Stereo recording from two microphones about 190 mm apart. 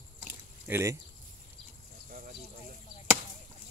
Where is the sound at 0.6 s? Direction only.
15° right (ahead or behind).